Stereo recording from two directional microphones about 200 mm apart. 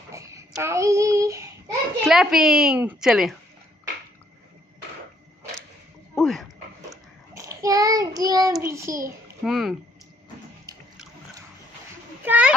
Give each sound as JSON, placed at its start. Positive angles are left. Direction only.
{"t": 0.1, "sound": "child singing", "side_deg": -15}
{"t": 2.0, "sound": "a woman's voice", "side_deg": 0}
{"t": 6.1, "sound": "a sound", "side_deg": 0}
{"t": 7.3, "sound": "child singing", "side_deg": -15}
{"t": 9.4, "sound": "a woman's voice", "side_deg": 0}
{"t": 12.3, "sound": "a woman's voice", "side_deg": -5}